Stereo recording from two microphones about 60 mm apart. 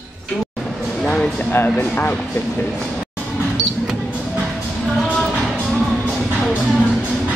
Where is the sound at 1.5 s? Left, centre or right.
Left.